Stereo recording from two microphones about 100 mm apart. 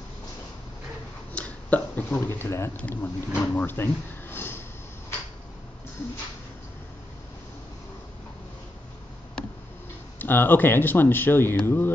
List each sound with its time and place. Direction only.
1.3 s speech: 15° left (ahead or behind)
10.1 s speech: 20° left (ahead or behind)